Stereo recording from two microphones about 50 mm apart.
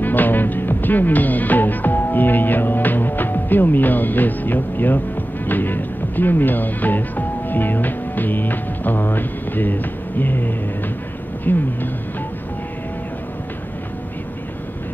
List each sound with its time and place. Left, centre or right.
0.0 s speech: left